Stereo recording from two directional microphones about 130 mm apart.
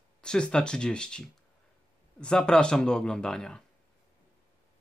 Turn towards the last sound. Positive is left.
turn(degrees=5)  # may be behind; listen again after turning